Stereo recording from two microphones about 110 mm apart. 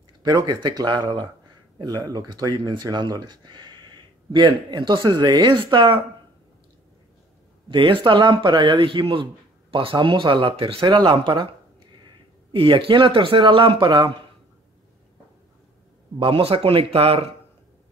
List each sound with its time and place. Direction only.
0.2 s speech: 35° right (ahead or behind)
7.7 s speech: 50° right (ahead or behind)
12.5 s speech: 55° right (ahead or behind)
16.2 s speech: 55° right (ahead or behind)